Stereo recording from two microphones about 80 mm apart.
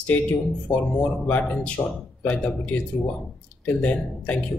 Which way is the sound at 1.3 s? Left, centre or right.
Centre.